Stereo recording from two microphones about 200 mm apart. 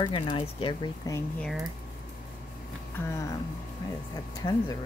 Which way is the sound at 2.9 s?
15° left (ahead or behind).